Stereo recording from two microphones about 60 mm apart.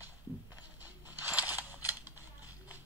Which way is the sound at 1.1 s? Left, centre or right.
Right.